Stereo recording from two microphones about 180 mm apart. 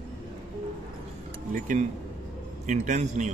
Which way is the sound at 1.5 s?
50° right (ahead or behind).